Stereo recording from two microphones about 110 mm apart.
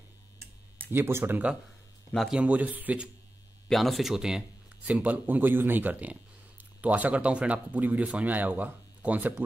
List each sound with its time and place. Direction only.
0.9 s speech: 20° right (ahead or behind)
3.6 s speech: centre (ahead or behind); by 9.3 s 15° right (ahead or behind)